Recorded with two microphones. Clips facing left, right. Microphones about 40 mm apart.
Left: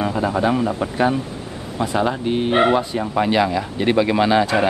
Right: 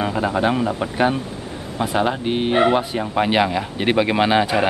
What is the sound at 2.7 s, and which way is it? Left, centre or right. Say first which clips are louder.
Speech: left 1 dB; centre.